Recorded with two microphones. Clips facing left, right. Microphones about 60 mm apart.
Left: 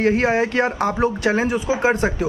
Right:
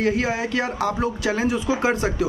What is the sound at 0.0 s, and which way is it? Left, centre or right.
Speech, left.